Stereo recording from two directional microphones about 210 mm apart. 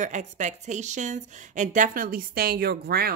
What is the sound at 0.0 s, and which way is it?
A woman's voice, 35° right (ahead or behind).